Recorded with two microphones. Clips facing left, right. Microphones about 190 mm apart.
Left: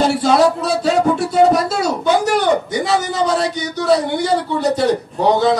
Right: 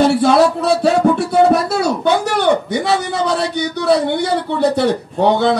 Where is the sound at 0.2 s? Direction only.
60° right (ahead or behind).